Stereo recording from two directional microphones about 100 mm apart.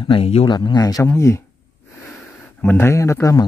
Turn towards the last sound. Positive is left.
turn(degrees=30)  # may be behind; listen again after turning